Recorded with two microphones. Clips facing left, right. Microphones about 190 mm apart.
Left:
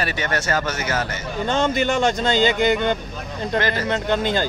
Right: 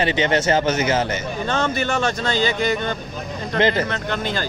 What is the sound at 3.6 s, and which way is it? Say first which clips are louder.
Speech: right 7 dB; 20° right (ahead or behind).